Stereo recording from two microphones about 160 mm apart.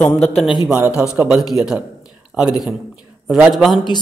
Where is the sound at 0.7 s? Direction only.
15° right (ahead or behind).